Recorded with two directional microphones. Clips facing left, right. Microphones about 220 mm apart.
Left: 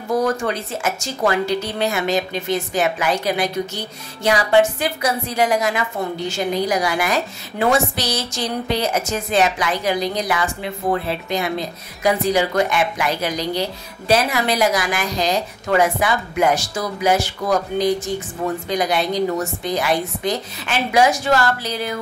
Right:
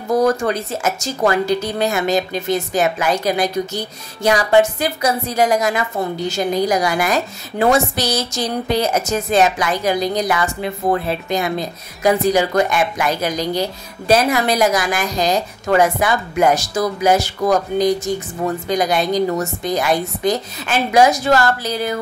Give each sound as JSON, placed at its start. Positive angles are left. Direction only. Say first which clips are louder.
{"t": 0.2, "sound": "a woman's voice", "louder": "right 4 dB", "side_deg": -40}